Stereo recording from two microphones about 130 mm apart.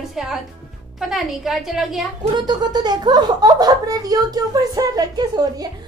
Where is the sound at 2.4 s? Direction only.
30° right (ahead or behind).